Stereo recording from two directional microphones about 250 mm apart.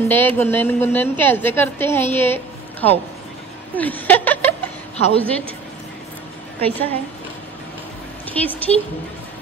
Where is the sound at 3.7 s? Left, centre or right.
Centre.